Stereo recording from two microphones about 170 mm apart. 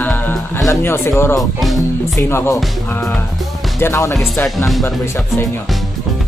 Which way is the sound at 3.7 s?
15° left (ahead or behind).